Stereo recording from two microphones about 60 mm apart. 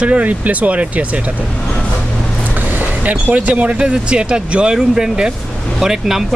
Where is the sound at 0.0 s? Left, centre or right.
Right.